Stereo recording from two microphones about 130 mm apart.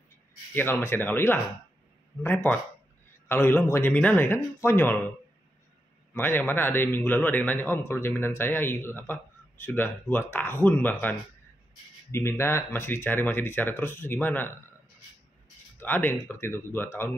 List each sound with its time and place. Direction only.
0.6 s a man's voice: 20° left (ahead or behind)
6.1 s a man's voice: 15° left (ahead or behind)
15.8 s a man's voice: 15° left (ahead or behind)